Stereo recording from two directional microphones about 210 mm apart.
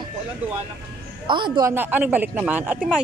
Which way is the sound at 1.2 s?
20° right (ahead or behind).